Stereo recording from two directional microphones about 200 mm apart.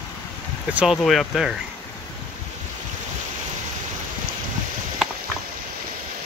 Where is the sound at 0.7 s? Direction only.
Centre (ahead or behind).